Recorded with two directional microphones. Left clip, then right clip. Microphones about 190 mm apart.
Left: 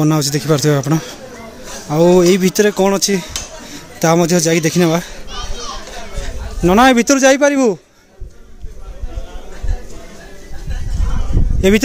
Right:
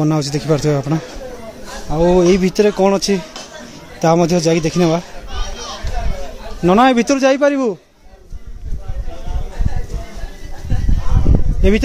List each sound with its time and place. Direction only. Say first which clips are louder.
0.0 s speech: left 2 dB; 5° left (ahead or behind)
1.9 s speech: left 2 dB; 20° left (ahead or behind)
6.2 s a man's voice: even; 15° left (ahead or behind)